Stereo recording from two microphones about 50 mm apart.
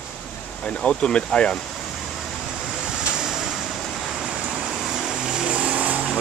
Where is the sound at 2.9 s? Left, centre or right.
Centre; by 6.1 s right.